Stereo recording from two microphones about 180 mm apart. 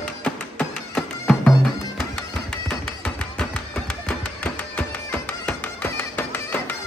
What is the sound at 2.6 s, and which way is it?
Music, 5° left (ahead or behind).